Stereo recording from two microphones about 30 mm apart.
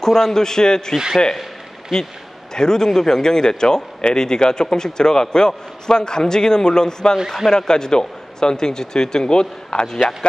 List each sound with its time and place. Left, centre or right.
0.0 s a man's voice: centre
2.5 s a man's voice: left